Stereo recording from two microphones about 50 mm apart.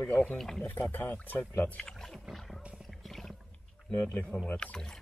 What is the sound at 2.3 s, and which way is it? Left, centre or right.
Roaring cats, centre.